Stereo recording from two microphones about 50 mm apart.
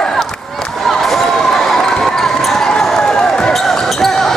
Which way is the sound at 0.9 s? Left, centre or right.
Centre.